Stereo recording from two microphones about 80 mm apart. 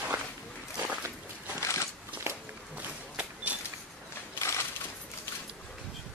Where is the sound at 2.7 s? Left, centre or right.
Centre.